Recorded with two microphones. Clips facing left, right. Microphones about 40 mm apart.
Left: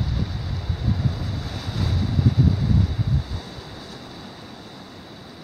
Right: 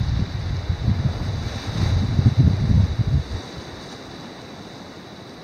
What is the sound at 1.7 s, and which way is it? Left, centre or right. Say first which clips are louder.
Waves: right 1 dB; right.